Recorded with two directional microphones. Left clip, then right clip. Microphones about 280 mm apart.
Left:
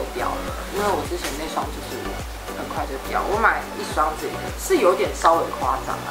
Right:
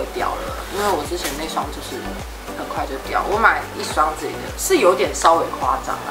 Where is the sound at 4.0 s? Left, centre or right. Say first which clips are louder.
Right 3 dB; centre.